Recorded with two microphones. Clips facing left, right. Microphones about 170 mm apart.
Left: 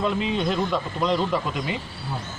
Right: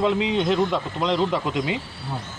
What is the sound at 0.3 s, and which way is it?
Speech, 20° right (ahead or behind).